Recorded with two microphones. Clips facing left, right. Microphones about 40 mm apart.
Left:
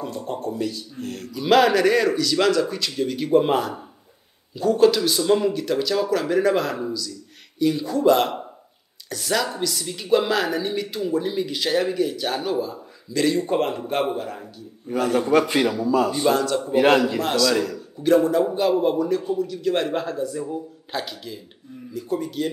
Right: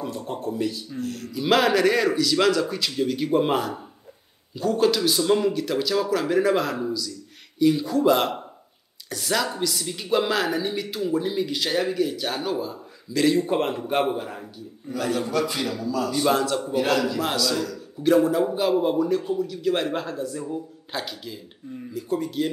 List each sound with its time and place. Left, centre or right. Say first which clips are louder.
0.0 s speech: left 1 dB; centre
1.0 s a man's voice: left 1 dB; left
1.3 s speech: left 3 dB; centre
14.9 s a man's voice: left 6 dB; left
16.3 s speech: left 2 dB; centre
16.7 s a man's voice: left 7 dB; left
17.2 s speech: left 4 dB; centre